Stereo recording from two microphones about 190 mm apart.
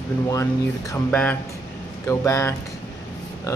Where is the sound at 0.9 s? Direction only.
10° left (ahead or behind).